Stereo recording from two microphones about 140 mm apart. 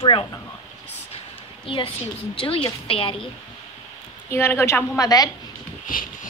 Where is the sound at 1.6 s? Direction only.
40° left (ahead or behind).